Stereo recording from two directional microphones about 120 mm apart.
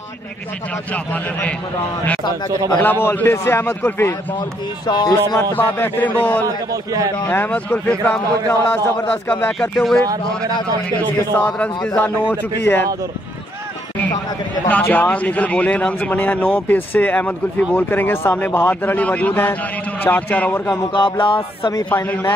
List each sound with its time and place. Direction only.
2.8 s a man's voice: 15° left (ahead or behind)
4.8 s speech: 35° left (ahead or behind)
5.1 s a man's voice: 20° left (ahead or behind)
6.4 s a man's voice: 30° right (ahead or behind)
7.2 s a man's voice: 15° left (ahead or behind)
10.0 s a man's voice: 30° right (ahead or behind)
11.3 s a man's voice: 10° left (ahead or behind)
14.7 s a man's voice: 10° left (ahead or behind)
20.9 s music: 45° left (ahead or behind)
21.9 s a man's voice: 15° left (ahead or behind)